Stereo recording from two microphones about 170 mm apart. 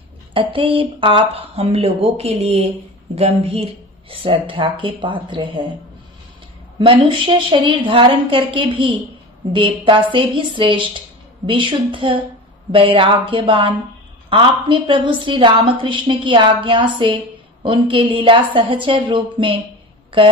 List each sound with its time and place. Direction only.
0.3 s a woman's voice: 30° right (ahead or behind)
6.8 s a woman's voice: 30° right (ahead or behind)